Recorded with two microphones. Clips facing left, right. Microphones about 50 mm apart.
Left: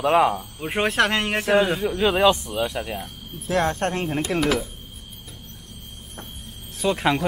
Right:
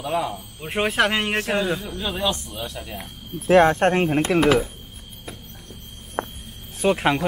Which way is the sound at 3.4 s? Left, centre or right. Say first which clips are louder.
Right 7 dB; right.